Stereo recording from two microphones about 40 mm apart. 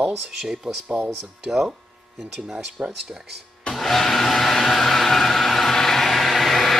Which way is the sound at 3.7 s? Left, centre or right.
Centre.